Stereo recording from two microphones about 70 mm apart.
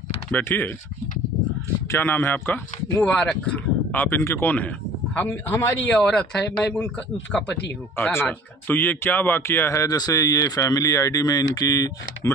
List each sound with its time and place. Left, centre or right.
0.4 s speech: left
1.9 s speech: left
3.0 s speech: centre
3.9 s speech: left
4.2 s speech: left
4.5 s a sound: left
5.2 s speech: left
5.9 s speech: centre
8.0 s speech: left
9.9 s speech: left